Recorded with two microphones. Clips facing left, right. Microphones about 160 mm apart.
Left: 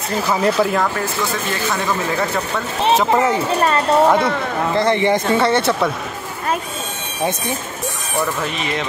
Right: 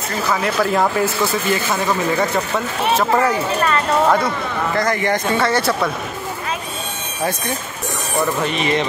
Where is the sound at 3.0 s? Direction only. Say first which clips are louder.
Right 1 dB; 20° left (ahead or behind).